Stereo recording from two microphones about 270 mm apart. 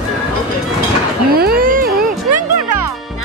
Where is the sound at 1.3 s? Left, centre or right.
Right.